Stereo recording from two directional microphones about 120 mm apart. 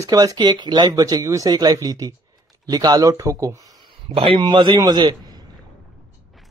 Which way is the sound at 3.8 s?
50° right (ahead or behind).